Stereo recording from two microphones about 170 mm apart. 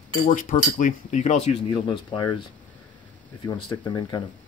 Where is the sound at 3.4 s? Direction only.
20° left (ahead or behind).